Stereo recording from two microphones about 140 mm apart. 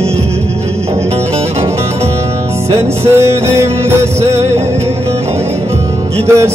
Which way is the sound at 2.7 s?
20° right (ahead or behind).